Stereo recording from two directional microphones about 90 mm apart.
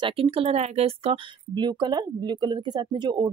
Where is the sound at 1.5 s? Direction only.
55° right (ahead or behind).